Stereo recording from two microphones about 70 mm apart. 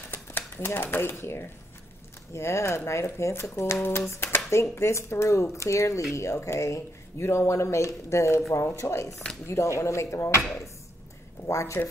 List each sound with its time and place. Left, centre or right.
0.1 s typewriter: left
0.7 s speech: left
2.3 s speech: left
11.4 s speech: left